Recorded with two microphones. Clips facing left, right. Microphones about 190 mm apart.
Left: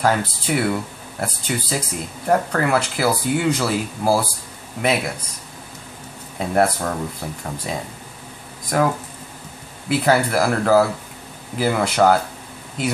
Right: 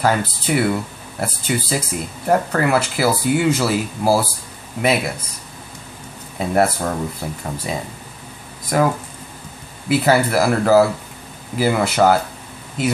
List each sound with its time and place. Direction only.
0.0 s speech: centre (ahead or behind)
6.3 s speech: 5° right (ahead or behind)